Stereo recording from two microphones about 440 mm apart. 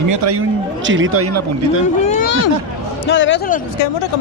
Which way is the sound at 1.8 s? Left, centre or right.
Centre.